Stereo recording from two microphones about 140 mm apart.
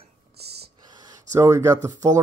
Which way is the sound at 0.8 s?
30° right (ahead or behind).